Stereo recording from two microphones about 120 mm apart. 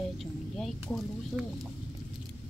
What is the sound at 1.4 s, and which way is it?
Speech, 10° right (ahead or behind).